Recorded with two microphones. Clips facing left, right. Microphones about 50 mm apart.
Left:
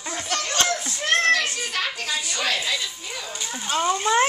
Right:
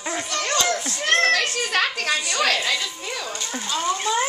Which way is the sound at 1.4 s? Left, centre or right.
Right.